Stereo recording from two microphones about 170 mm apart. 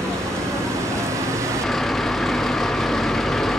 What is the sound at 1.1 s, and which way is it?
Vehicle, 15° right (ahead or behind).